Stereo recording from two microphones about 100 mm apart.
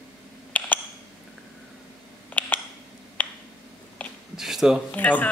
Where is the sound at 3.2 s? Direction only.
15° left (ahead or behind).